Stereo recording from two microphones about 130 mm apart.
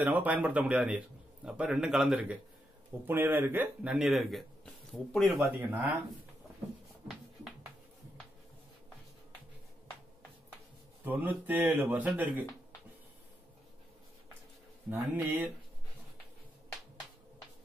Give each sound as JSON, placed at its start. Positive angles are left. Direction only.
{"t": 0.0, "sound": "a man's voice", "side_deg": -10}
{"t": 3.9, "sound": "speech", "side_deg": -5}
{"t": 5.4, "sound": "a man's voice", "side_deg": -15}
{"t": 11.1, "sound": "a man's voice", "side_deg": -15}
{"t": 14.9, "sound": "a man's voice", "side_deg": -20}